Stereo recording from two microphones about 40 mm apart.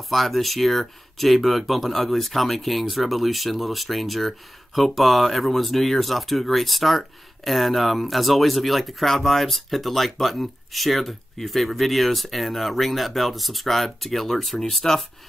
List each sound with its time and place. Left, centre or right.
0.1 s speech: centre